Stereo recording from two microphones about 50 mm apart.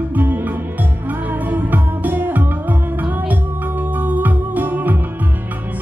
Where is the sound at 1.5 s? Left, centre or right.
Right.